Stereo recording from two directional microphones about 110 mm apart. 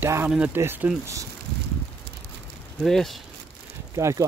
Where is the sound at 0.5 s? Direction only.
20° right (ahead or behind).